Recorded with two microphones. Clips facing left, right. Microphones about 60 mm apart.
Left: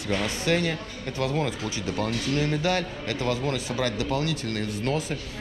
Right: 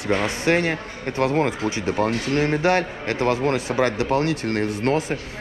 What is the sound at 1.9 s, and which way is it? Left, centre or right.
A man's voice, right.